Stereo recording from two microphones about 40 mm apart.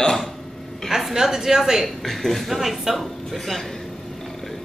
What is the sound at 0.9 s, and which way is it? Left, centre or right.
Speech, centre.